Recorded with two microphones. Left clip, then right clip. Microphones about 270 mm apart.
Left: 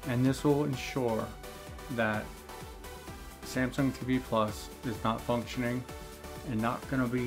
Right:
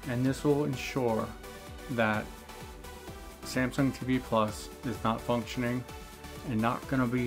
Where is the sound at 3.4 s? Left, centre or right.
Centre.